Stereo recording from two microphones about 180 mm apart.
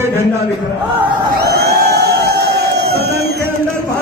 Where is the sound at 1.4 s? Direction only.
65° right (ahead or behind).